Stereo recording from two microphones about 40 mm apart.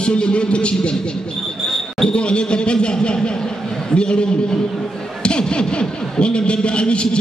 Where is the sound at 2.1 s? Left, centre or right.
Left.